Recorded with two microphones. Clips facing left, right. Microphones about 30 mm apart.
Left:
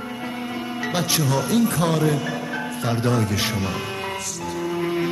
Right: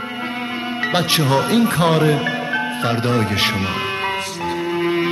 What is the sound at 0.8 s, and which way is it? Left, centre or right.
Speech, right.